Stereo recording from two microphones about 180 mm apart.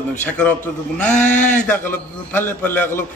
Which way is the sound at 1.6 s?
10° left (ahead or behind).